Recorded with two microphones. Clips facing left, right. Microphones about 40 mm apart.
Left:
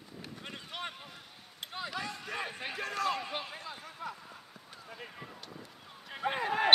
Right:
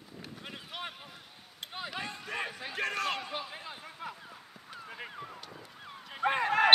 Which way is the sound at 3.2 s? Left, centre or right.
Centre.